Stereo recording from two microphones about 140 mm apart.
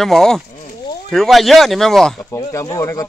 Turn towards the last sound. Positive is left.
turn(degrees=25)  # may be behind; listen again after turning